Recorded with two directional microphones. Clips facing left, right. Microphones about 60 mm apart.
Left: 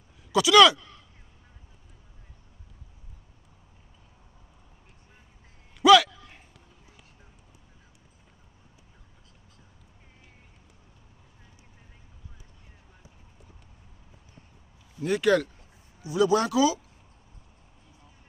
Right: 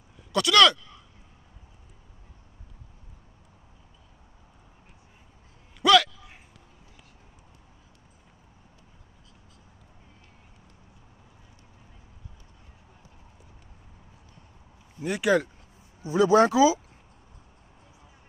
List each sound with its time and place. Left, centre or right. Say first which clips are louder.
0.3 s speech: left 3 dB; centre
5.8 s a sound: left 3 dB; centre
15.0 s speech: left 1 dB; centre
16.0 s speech: right 4 dB; right